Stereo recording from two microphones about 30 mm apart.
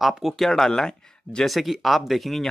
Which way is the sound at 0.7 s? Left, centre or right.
Left.